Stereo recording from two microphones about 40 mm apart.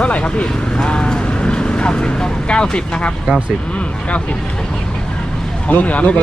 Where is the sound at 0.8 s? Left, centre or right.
Left.